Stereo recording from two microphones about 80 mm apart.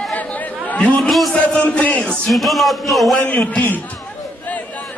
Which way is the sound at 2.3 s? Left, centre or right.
Centre.